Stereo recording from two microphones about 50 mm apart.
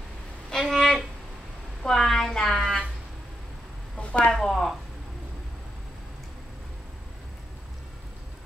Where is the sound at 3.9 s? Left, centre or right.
Left.